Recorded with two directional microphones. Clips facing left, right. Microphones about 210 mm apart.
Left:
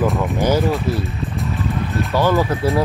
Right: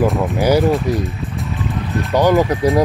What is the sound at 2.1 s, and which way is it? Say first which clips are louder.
Speech: right 4 dB; 15° right (ahead or behind).